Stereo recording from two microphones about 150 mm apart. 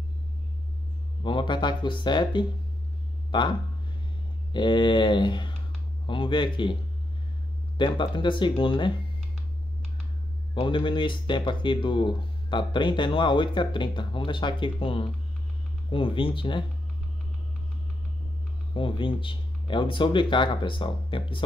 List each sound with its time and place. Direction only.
1.2 s speech: 30° left (ahead or behind)
10.5 s speech: 35° left (ahead or behind)
18.7 s speech: 35° left (ahead or behind)